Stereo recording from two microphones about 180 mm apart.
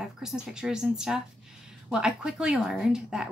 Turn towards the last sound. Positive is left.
turn(degrees=-5)  # may be behind; listen again after turning